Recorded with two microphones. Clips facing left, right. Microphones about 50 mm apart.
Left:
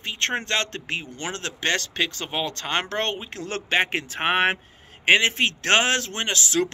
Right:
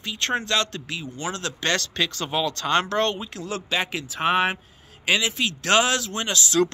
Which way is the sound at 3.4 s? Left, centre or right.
Left.